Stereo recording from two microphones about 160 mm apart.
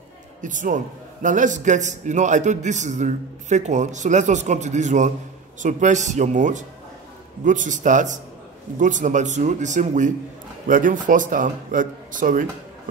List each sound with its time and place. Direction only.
0.4 s a man's voice: 55° right (ahead or behind)